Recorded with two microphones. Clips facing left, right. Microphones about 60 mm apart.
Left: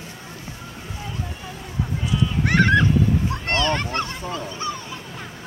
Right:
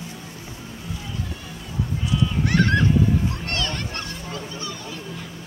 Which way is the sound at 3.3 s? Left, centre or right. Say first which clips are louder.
Left 6 dB; left.